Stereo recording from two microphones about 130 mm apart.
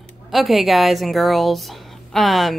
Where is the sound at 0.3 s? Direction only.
Centre (ahead or behind).